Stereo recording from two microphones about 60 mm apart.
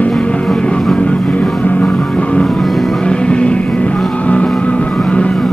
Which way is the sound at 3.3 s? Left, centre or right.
Centre.